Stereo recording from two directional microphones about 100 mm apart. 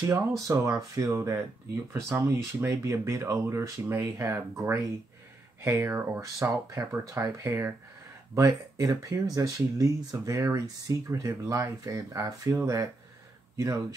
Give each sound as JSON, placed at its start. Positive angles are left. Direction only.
{"t": 0.0, "sound": "speech", "side_deg": -30}